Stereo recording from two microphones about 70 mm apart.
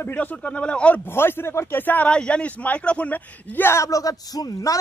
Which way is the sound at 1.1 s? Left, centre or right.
Left.